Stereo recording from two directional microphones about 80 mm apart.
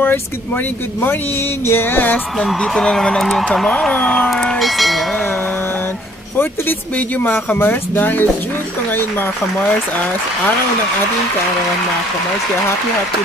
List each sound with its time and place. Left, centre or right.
1.7 s speech: left
2.4 s speech: centre
4.3 s speech: centre
7.2 s speech: left